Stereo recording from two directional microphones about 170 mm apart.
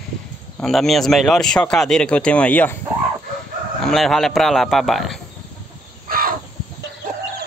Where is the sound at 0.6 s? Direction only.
Centre (ahead or behind).